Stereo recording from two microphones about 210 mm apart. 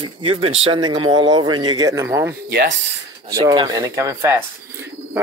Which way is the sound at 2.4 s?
55° right (ahead or behind).